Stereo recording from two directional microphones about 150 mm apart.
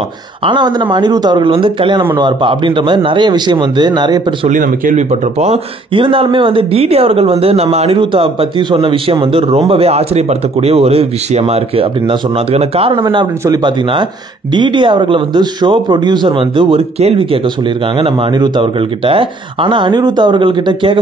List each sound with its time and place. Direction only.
0.5 s speech: 30° right (ahead or behind)
4.5 s speech: 65° right (ahead or behind)
5.9 s speech: 35° right (ahead or behind)